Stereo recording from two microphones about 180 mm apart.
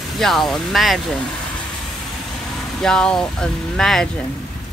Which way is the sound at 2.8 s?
5° left (ahead or behind).